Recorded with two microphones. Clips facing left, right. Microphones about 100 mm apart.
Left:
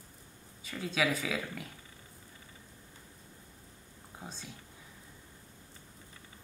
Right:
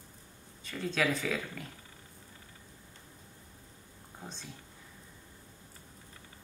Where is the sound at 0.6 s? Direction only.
5° left (ahead or behind).